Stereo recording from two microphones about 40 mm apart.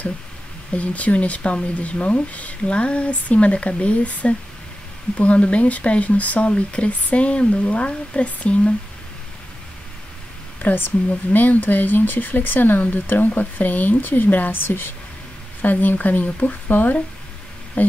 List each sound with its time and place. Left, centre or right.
0.7 s speech: left
10.6 s speech: left
14.5 s a woman's voice: left
15.6 s speech: left